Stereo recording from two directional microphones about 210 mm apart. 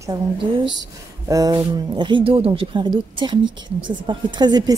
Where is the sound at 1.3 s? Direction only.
15° right (ahead or behind).